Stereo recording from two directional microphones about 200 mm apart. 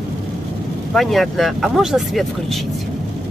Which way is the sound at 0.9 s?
Centre (ahead or behind).